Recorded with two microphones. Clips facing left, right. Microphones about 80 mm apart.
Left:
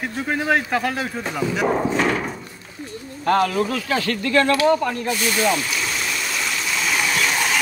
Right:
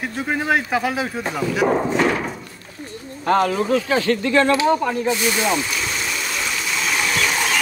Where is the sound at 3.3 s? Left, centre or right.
Right.